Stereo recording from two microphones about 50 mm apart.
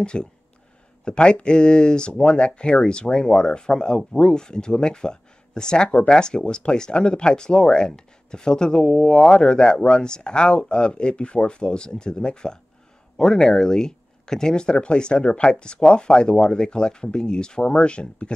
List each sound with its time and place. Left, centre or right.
0.0 s speech: centre